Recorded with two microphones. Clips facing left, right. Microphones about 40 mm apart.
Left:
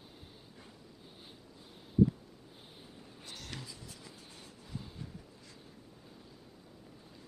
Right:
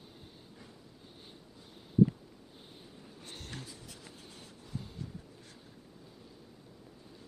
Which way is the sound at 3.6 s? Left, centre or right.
Right.